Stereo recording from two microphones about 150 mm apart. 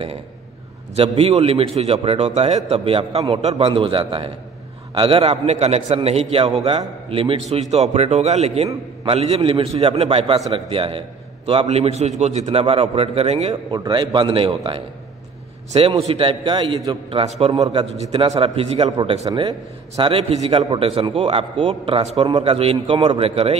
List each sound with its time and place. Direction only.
0.9 s a man's voice: 40° right (ahead or behind)
13.7 s a man's voice: 30° right (ahead or behind)
19.2 s a man's voice: 30° right (ahead or behind)